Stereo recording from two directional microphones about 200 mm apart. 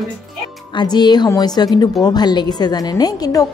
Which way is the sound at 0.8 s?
20° left (ahead or behind).